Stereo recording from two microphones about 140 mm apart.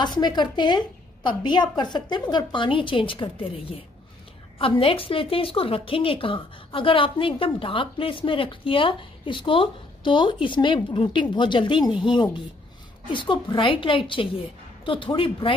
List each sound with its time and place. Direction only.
0.0 s a woman's voice: 30° left (ahead or behind)